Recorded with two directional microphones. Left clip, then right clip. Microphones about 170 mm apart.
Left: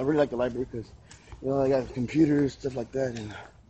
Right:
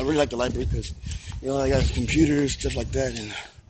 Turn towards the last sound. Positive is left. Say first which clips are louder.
# right 3 dB
turn(degrees=-5)  # may be behind; listen again after turning